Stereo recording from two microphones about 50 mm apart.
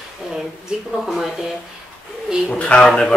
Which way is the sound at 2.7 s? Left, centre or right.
Left.